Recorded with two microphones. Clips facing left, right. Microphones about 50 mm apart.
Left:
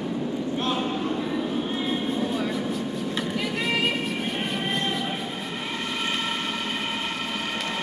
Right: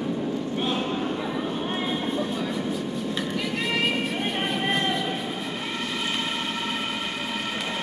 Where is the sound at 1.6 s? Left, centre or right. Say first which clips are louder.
Even; right.